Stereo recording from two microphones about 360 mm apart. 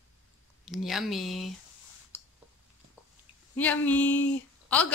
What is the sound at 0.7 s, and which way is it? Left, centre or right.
Speech, centre.